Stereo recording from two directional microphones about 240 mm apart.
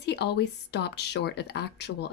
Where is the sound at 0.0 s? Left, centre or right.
Left.